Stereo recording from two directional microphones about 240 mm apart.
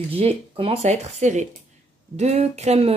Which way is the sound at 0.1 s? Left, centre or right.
Right.